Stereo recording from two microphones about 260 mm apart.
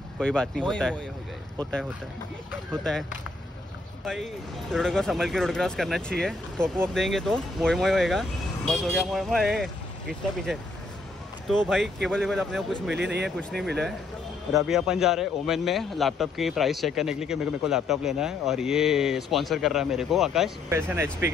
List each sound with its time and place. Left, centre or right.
0.2 s a man's voice: centre
12.9 s speech: right
13.4 s a man's voice: centre